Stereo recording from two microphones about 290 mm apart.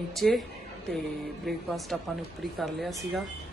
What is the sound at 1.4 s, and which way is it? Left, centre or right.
Speech, centre.